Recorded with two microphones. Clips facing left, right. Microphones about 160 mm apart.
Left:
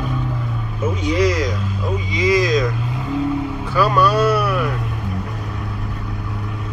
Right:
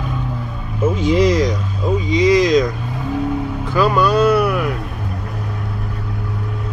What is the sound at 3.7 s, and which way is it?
Speech, 20° right (ahead or behind).